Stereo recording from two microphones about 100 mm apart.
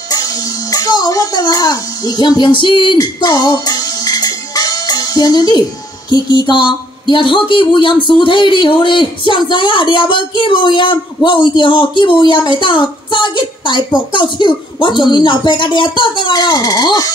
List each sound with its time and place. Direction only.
0.1 s a child's voice: 40° left (ahead or behind); by 3.0 s 55° left (ahead or behind)
3.0 s music: 45° left (ahead or behind)
6.0 s speech: 50° left (ahead or behind)